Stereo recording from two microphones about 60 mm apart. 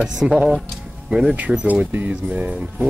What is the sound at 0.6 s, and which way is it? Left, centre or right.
Music, centre.